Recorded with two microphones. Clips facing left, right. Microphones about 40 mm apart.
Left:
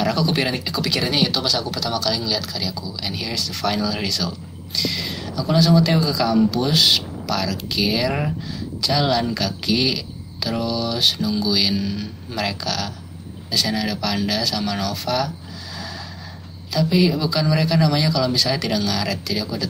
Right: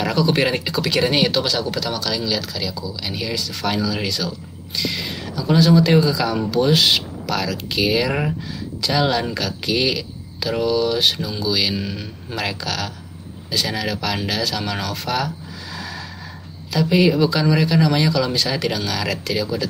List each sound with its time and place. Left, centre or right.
0.0 s speech: centre
2.0 s speech: centre
4.7 s speech: centre